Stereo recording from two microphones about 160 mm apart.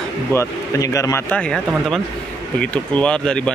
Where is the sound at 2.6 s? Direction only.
5° left (ahead or behind).